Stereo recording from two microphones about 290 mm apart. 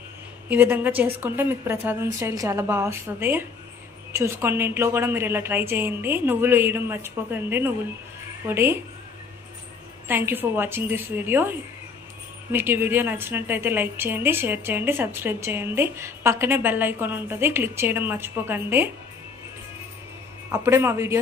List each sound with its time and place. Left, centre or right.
0.5 s a woman's voice: centre
10.0 s a woman's voice: centre
20.5 s a woman's voice: centre